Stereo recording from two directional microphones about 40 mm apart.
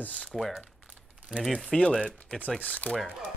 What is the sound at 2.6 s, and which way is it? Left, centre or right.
Speech, left.